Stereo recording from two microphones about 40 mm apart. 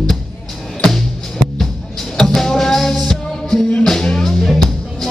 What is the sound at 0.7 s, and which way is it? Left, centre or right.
Music, centre.